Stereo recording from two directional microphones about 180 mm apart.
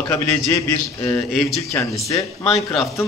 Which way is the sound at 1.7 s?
15° left (ahead or behind).